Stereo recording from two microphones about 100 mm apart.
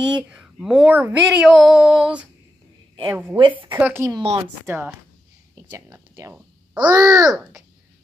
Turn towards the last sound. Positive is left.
turn(degrees=-5)  # may be behind; listen again after turning